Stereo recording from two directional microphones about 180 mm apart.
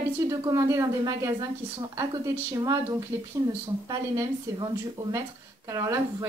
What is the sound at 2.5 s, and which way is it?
A woman's voice, 20° right (ahead or behind).